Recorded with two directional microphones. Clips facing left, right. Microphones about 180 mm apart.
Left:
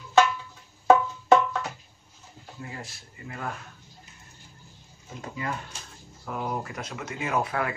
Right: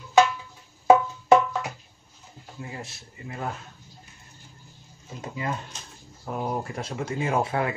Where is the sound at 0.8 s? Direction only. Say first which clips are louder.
Right 1 dB; 10° right (ahead or behind).